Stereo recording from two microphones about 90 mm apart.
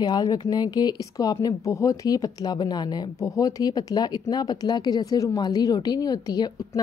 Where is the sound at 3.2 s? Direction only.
40° left (ahead or behind).